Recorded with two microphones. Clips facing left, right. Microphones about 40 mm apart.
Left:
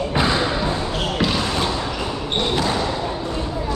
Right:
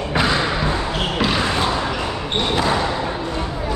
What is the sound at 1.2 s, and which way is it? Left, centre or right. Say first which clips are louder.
Basketball bounce: right 2 dB; centre.